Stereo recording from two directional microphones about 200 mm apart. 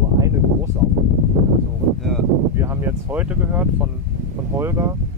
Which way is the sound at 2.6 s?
10° right (ahead or behind).